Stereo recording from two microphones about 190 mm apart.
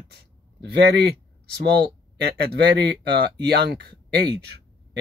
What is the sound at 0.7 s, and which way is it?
Speech, 60° right (ahead or behind).